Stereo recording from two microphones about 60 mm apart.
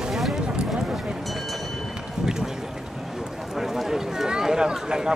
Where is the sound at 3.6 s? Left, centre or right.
Centre.